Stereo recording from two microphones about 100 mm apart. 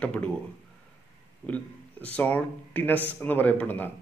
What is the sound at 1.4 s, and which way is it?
A man's voice, 15° left (ahead or behind).